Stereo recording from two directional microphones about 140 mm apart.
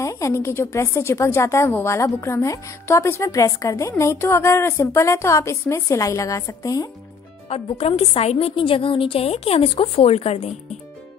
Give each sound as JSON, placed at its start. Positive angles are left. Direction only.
{"t": 0.0, "sound": "a woman's voice", "side_deg": 20}
{"t": 7.4, "sound": "a woman's voice", "side_deg": 45}